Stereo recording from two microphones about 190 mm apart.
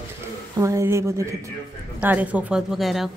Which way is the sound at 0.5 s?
15° right (ahead or behind).